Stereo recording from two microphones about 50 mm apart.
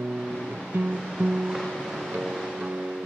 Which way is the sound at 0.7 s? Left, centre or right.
Right.